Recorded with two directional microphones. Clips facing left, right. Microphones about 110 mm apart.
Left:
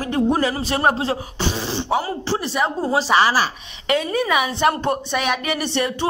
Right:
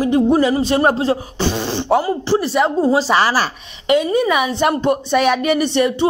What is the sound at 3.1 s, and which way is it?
Speech, 20° left (ahead or behind).